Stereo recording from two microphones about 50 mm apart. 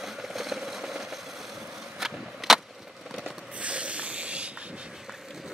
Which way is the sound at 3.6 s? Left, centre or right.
Right.